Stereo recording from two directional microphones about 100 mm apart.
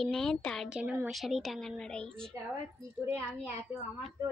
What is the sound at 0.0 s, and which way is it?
Speech, 5° left (ahead or behind).